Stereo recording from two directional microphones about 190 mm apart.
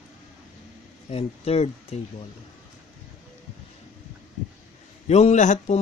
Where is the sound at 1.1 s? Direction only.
30° left (ahead or behind).